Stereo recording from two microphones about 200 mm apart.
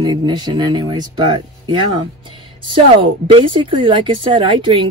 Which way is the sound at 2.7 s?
25° right (ahead or behind).